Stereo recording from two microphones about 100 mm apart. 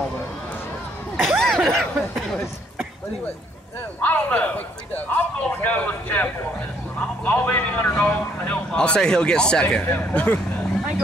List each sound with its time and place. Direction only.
1.2 s a sound: 5° left (ahead or behind)
1.6 s snicker: centre (ahead or behind)
4.0 s a man's voice: 15° left (ahead or behind)